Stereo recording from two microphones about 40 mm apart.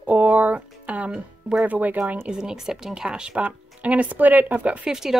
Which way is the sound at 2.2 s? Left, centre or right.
Centre.